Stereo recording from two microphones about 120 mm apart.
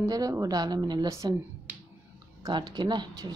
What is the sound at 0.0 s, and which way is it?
Speech, 30° right (ahead or behind).